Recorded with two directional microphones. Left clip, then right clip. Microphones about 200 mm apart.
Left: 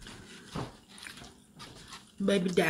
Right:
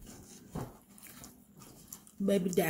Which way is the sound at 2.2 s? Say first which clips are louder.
Left 2 dB; 5° right (ahead or behind).